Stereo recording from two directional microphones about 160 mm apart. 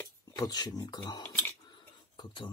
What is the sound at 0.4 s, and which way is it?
Speech, 25° left (ahead or behind).